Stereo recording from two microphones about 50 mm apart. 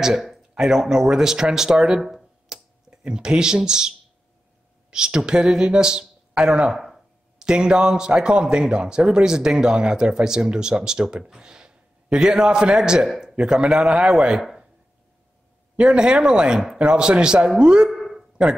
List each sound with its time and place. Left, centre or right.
0.0 s speech: centre
2.0 s speech: centre
2.5 s tick-tock: centre
3.0 s speech: centre
4.9 s speech: centre
6.7 s a sound: centre
7.3 s speech: centre
13.1 s a sound: centre
13.4 s speech: centre
15.7 s speech: centre
17.8 s a sound: centre